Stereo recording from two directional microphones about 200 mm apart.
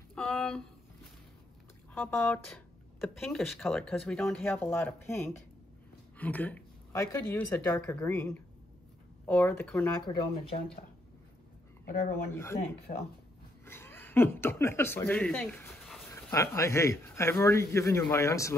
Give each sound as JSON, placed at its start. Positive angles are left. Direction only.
{"t": 0.1, "sound": "a sound", "side_deg": 0}
{"t": 2.0, "sound": "speech", "side_deg": 10}
{"t": 10.0, "sound": "speech", "side_deg": 30}
{"t": 11.9, "sound": "speech", "side_deg": 50}
{"t": 12.5, "sound": "speech", "side_deg": 30}
{"t": 13.7, "sound": "speech", "side_deg": 10}
{"t": 16.3, "sound": "speech", "side_deg": 15}